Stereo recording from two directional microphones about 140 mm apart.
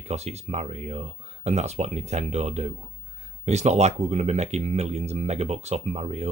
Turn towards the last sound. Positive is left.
turn(degrees=-50)  # may be behind; listen again after turning